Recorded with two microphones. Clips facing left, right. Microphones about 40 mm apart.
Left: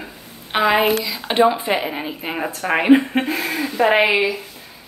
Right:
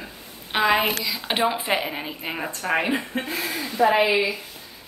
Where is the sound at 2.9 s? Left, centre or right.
Left.